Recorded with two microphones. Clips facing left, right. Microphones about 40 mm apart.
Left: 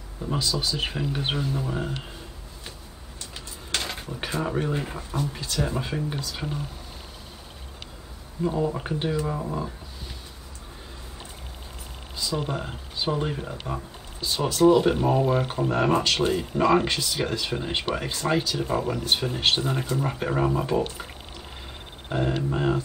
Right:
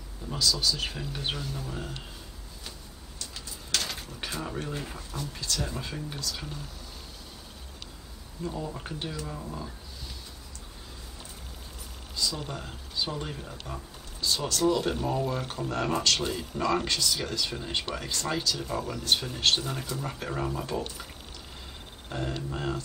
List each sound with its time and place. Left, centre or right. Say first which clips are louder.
0.2 s speech: left 2 dB; left
3.7 s speech: left 2 dB; left
8.5 s speech: left 9 dB; left
12.2 s speech: left 5 dB; left
22.1 s speech: left 8 dB; left